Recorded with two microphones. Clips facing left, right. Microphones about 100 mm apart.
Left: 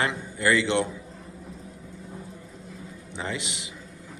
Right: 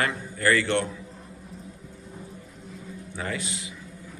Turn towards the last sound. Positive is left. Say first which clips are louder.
# right 1 dB
turn(degrees=25)  # may be behind; listen again after turning